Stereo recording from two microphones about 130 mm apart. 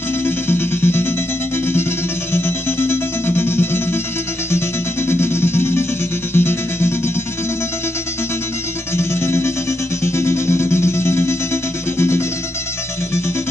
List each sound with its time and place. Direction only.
0.2 s music: 15° left (ahead or behind)
2.3 s music: 20° left (ahead or behind)
8.9 s music: 20° left (ahead or behind)